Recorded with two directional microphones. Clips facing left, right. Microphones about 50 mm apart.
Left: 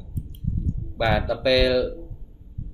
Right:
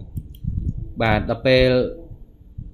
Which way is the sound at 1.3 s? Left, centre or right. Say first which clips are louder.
Right 5 dB; right.